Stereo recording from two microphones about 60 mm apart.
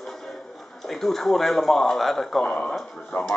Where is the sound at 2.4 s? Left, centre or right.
Centre.